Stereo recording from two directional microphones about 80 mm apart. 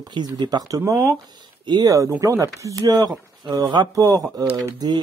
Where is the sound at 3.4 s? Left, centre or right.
Right.